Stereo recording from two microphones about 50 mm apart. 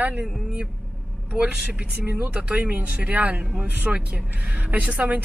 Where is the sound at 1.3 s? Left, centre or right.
Right.